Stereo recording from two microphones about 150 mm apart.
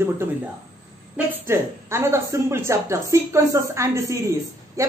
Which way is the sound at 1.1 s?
15° right (ahead or behind).